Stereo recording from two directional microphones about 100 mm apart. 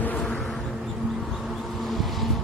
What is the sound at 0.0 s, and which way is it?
Music, 15° left (ahead or behind).